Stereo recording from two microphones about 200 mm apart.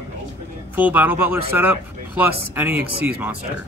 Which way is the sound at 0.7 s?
10° right (ahead or behind).